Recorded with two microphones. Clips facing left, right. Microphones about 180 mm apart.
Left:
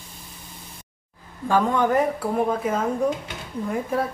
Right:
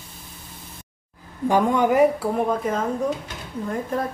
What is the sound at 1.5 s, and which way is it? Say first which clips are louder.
Speech: right 1 dB; 10° right (ahead or behind).